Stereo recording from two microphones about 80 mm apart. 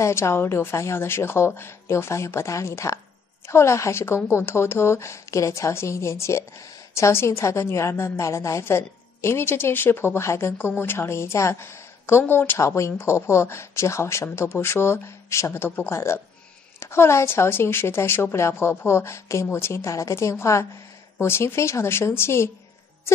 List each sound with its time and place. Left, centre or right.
0.0 s a woman's voice: left